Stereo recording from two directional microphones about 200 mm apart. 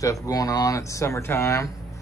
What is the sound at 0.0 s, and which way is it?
Speech, 15° left (ahead or behind).